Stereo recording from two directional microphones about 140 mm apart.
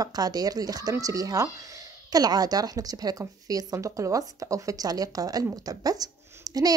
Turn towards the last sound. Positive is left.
turn(degrees=-25)  # may be behind; listen again after turning